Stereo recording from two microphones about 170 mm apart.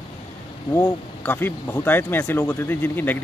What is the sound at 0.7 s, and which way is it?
Speech, 10° left (ahead or behind).